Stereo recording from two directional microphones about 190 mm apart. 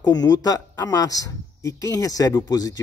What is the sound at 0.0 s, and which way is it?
A man's voice, 20° left (ahead or behind).